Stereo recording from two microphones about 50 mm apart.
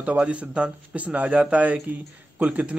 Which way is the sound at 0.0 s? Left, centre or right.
Right.